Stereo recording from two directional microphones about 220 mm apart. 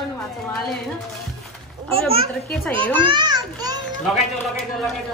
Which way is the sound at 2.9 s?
20° right (ahead or behind).